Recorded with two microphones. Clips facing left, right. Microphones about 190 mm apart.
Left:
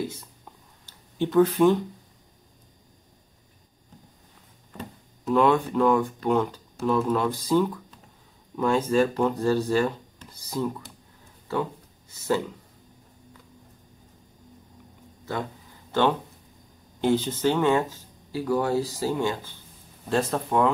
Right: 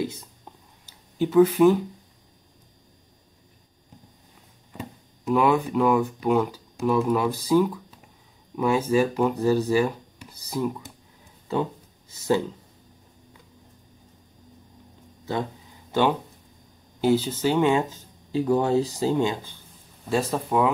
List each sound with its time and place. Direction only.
0.8 s a sound: 5° right (ahead or behind)
4.7 s speech: 10° right (ahead or behind)
15.9 s speech: 10° right (ahead or behind)
20.1 s speech: 5° right (ahead or behind)